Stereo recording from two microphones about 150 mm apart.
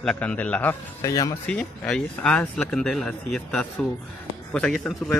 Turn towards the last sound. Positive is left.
turn(degrees=0)  # may be behind; listen again after turning